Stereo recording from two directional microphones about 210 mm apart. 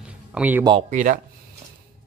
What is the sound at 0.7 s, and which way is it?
Speech, 30° right (ahead or behind).